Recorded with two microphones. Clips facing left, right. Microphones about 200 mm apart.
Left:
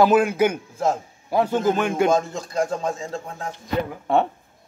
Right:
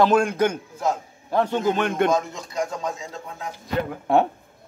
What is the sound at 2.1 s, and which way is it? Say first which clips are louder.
Speech: left 2 dB; 30° left (ahead or behind).